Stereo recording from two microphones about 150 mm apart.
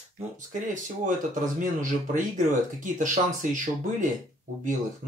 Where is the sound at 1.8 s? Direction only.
60° right (ahead or behind).